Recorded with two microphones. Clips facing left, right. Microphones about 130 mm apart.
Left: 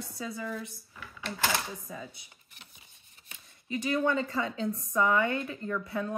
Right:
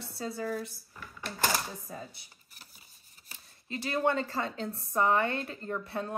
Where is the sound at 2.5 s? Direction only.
40° right (ahead or behind).